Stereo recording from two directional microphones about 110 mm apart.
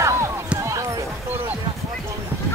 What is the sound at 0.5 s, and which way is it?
Run, 30° right (ahead or behind).